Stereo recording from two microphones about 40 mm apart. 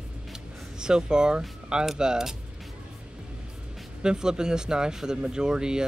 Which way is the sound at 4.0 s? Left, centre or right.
Centre.